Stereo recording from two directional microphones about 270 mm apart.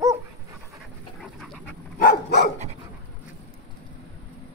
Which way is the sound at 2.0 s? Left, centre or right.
Left.